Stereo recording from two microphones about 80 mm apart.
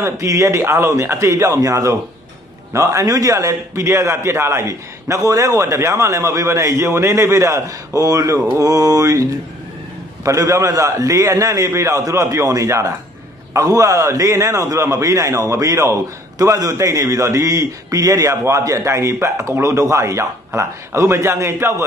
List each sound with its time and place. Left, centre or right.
0.0 s a man's voice: right
10.2 s a man's voice: right